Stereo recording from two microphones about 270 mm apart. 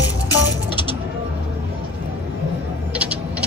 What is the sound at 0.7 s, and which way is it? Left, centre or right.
Music, centre.